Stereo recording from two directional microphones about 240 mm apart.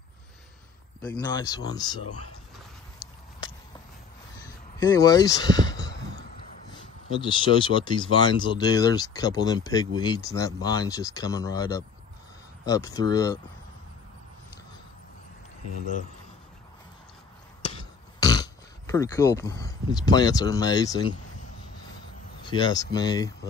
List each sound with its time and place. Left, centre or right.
1.2 s speech: centre
4.7 s speech: centre
7.3 s speech: centre
12.6 s speech: centre
17.7 s speech: centre
22.5 s speech: centre